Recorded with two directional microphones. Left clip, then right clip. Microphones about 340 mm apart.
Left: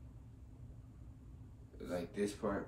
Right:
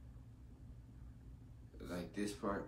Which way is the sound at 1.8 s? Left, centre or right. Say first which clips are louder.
Left 5 dB; centre.